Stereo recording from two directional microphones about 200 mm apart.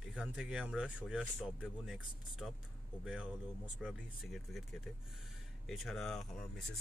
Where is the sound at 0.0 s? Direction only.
5° right (ahead or behind).